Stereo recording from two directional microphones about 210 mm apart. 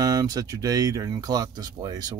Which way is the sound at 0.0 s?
15° right (ahead or behind).